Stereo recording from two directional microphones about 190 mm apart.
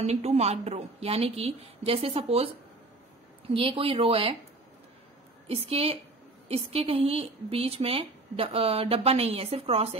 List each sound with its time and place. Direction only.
0.0 s a woman's voice: 35° right (ahead or behind)
5.5 s a woman's voice: 30° right (ahead or behind)